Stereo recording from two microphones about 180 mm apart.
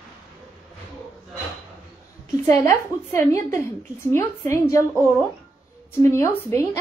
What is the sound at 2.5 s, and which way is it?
A woman's voice, 15° left (ahead or behind).